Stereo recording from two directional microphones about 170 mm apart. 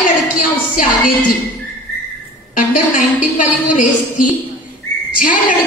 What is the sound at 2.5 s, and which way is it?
A woman's voice, 50° left (ahead or behind).